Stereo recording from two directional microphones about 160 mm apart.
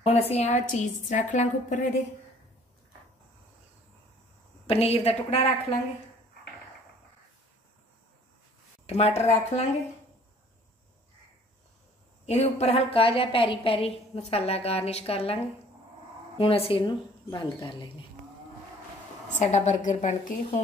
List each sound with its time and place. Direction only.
0.0 s a woman's voice: 40° left (ahead or behind)
4.6 s a woman's voice: 40° left (ahead or behind)
8.8 s a woman's voice: 40° left (ahead or behind)
12.3 s a woman's voice: 40° left (ahead or behind)
19.3 s a woman's voice: 45° left (ahead or behind)